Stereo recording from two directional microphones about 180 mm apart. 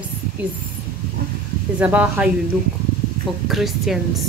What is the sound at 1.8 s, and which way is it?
Speech, 10° right (ahead or behind).